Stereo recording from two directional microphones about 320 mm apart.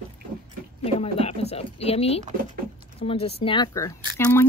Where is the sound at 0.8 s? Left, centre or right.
Centre.